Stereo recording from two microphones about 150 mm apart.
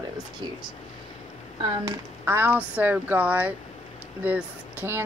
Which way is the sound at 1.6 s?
35° right (ahead or behind).